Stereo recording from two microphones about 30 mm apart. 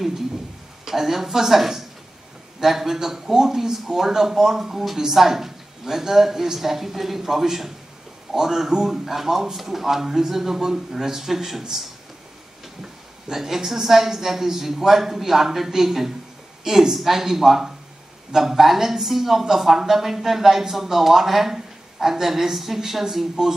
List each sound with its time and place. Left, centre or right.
0.8 s speech: centre
12.8 s speech: centre